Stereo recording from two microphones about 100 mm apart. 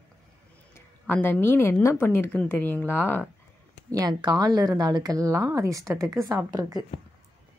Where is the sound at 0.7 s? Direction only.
20° left (ahead or behind).